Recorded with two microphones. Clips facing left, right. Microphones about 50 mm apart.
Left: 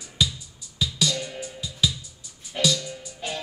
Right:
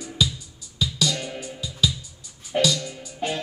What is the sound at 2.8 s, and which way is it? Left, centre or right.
Music, right.